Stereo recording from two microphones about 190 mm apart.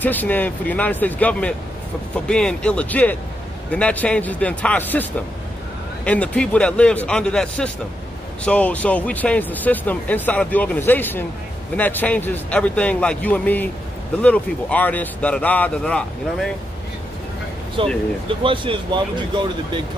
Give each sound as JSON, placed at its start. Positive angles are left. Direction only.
{"t": 0.0, "sound": "speech", "side_deg": 10}
{"t": 6.0, "sound": "a man's voice", "side_deg": 5}
{"t": 17.8, "sound": "speech", "side_deg": -30}